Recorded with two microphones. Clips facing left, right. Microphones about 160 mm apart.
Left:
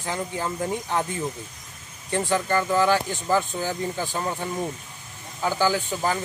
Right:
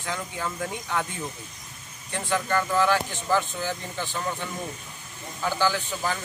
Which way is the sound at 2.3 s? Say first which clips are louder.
Left 1 dB; 35° left (ahead or behind).